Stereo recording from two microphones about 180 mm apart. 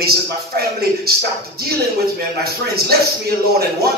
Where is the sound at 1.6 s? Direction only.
60° right (ahead or behind).